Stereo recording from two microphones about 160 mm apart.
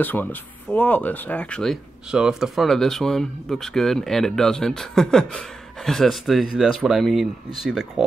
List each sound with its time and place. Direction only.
0.0 s speech: 10° left (ahead or behind)